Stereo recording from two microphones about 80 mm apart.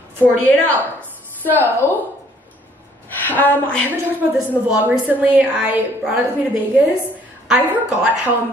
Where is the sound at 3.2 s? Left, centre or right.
Left.